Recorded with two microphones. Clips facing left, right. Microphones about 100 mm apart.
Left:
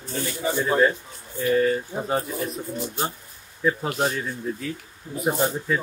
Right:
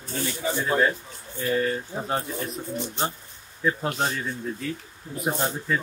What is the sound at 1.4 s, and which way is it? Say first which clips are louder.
Speech: left 4 dB; centre (ahead or behind).